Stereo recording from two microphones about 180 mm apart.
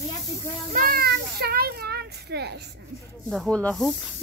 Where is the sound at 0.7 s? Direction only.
50° right (ahead or behind).